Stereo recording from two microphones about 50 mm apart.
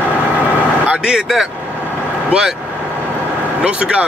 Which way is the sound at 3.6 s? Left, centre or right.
Right.